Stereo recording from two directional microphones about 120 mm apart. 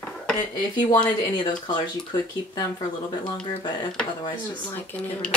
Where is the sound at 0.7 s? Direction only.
40° left (ahead or behind).